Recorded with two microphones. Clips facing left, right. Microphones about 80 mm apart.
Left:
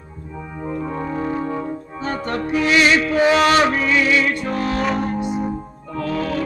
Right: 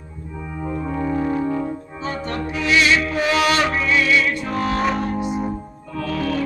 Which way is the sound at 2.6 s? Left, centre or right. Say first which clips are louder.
Left 1 dB; left.